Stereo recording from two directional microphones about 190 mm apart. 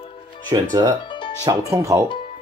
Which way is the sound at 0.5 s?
20° right (ahead or behind).